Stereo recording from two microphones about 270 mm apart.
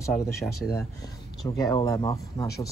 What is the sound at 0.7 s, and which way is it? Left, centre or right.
Speech, centre.